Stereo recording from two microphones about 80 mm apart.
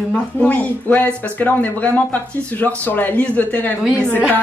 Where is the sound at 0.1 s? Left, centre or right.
Centre.